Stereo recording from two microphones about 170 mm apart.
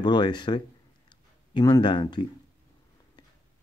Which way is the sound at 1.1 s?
25° left (ahead or behind).